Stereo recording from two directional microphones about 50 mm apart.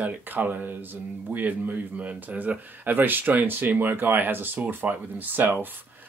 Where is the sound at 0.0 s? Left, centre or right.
Right.